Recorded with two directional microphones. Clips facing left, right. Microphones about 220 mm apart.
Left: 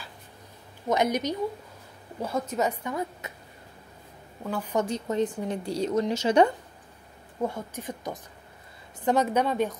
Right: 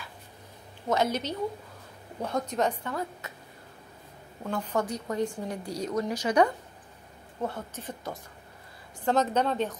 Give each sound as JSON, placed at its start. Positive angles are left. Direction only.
{"t": 0.8, "sound": "a woman's voice", "side_deg": 15}
{"t": 2.5, "sound": "a woman's voice", "side_deg": 10}
{"t": 4.4, "sound": "a woman's voice", "side_deg": 5}
{"t": 4.7, "sound": "a woman's voice", "side_deg": 25}
{"t": 7.4, "sound": "a woman's voice", "side_deg": 15}